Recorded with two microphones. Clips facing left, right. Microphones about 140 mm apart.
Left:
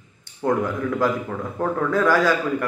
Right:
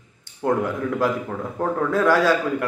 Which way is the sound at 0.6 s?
20° right (ahead or behind).